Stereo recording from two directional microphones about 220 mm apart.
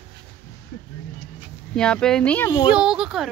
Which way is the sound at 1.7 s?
5° left (ahead or behind).